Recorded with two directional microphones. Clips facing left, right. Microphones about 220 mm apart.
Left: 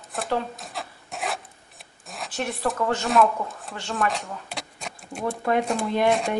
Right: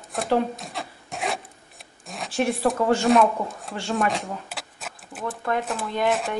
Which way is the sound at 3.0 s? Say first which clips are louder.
Right 1 dB; centre (ahead or behind).